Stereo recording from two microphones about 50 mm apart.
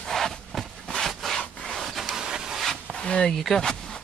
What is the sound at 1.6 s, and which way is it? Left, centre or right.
Rub, centre.